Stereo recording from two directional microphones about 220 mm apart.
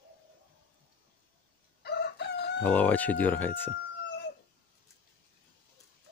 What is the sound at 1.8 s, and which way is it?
Chicken, 50° left (ahead or behind).